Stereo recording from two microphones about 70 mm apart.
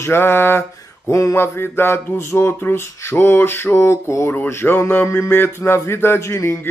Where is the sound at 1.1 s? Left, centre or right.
Left.